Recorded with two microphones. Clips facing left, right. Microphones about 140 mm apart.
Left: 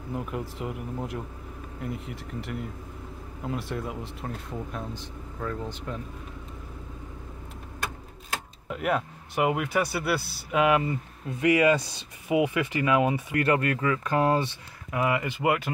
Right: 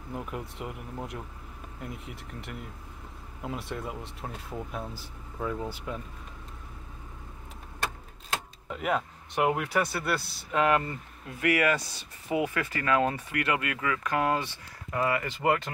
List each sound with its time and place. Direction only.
0.1 s speech: centre (ahead or behind)
8.6 s speech: centre (ahead or behind)
11.2 s speech: 20° left (ahead or behind)
13.3 s speech: 35° left (ahead or behind)
14.9 s speech: 15° left (ahead or behind)